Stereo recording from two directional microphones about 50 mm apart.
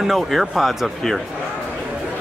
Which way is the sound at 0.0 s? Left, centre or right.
Centre.